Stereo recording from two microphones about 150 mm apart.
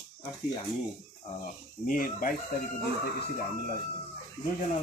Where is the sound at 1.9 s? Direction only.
75° left (ahead or behind).